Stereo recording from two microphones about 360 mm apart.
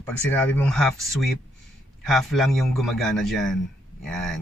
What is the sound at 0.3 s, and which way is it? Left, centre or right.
Speech, centre.